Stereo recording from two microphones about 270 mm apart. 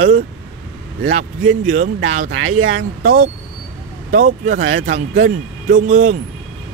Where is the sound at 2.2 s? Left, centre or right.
Right.